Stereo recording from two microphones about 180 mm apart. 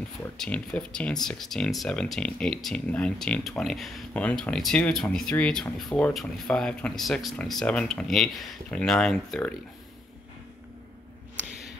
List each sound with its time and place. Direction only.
0.2 s speech: 5° left (ahead or behind)